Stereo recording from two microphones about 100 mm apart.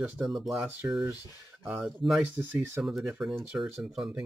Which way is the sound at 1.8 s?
Centre (ahead or behind).